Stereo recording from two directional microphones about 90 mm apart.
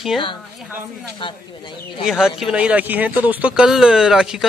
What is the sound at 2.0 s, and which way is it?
Speech, 5° right (ahead or behind).